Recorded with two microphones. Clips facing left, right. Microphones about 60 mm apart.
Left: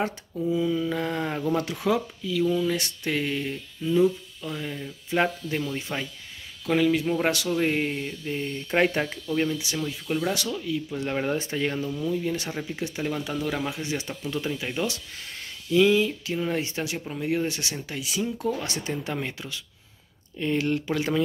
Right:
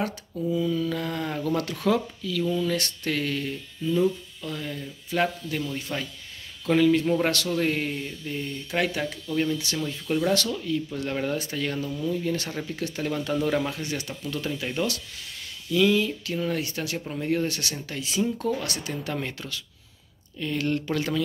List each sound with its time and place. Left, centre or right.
0.4 s speech: centre
6.6 s speech: centre
8.6 s speech: left
9.3 s speech: centre
11.9 s speech: centre
13.3 s speech: centre
13.7 s speech: centre
17.0 s speech: centre
18.6 s speech: left